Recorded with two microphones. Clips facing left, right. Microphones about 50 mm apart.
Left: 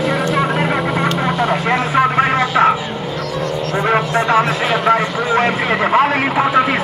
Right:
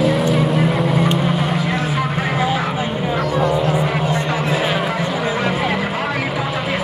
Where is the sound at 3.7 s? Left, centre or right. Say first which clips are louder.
Left 3 dB; left.